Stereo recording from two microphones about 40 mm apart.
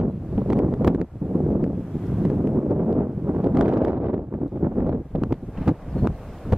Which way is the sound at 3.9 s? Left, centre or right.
Right.